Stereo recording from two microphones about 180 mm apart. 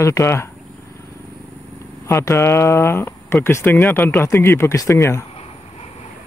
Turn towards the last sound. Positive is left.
turn(degrees=15)  # may be behind; listen again after turning